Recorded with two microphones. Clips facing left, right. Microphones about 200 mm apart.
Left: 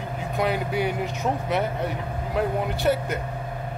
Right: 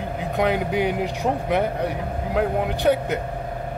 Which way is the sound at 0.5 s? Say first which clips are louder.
Right 3 dB; 15° right (ahead or behind).